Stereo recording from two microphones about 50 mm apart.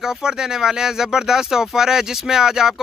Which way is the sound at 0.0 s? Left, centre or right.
Centre.